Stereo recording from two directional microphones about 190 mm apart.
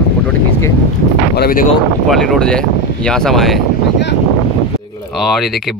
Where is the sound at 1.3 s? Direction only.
55° left (ahead or behind).